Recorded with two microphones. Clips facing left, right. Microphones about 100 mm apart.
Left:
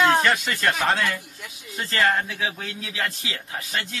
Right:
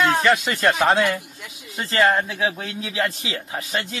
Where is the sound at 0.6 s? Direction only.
30° right (ahead or behind).